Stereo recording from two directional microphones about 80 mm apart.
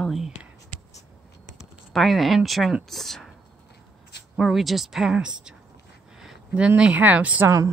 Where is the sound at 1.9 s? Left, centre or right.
Centre.